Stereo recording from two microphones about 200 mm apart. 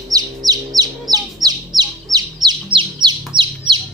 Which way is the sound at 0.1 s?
20° right (ahead or behind).